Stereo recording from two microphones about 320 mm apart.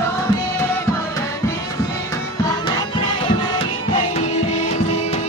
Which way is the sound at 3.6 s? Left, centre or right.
Centre.